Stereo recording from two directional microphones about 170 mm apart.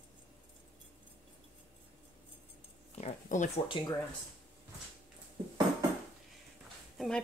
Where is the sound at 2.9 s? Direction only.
45° left (ahead or behind).